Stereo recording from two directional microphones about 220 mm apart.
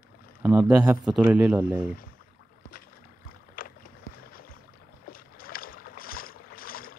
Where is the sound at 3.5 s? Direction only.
40° left (ahead or behind).